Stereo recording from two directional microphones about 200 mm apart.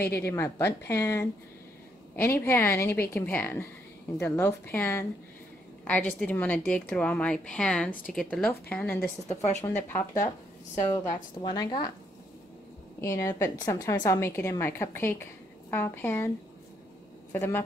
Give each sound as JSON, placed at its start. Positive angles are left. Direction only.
{"t": 0.2, "sound": "a woman's voice", "side_deg": 10}
{"t": 13.0, "sound": "a woman's voice", "side_deg": 15}
{"t": 17.3, "sound": "speech", "side_deg": 10}